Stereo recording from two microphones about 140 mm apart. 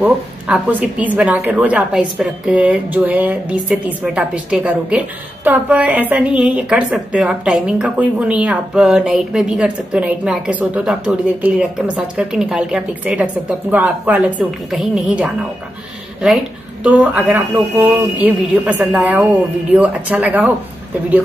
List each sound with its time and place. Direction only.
0.0 s speech: 10° right (ahead or behind)
16.8 s speech: 10° right (ahead or behind)